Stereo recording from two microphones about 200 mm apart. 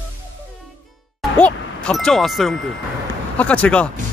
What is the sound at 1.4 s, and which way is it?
Speech, 5° left (ahead or behind).